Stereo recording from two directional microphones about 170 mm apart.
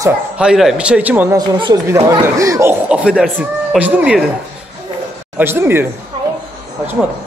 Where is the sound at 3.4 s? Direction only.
10° right (ahead or behind).